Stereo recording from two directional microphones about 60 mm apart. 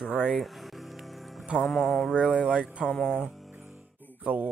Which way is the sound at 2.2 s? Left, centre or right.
Centre.